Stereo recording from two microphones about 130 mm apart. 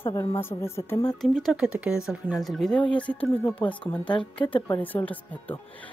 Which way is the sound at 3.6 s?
40° left (ahead or behind).